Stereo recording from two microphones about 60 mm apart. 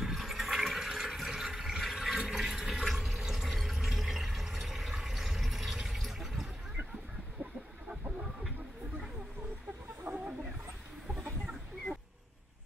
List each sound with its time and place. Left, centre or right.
0.0 s toilet flush: centre
10.0 s chicken: right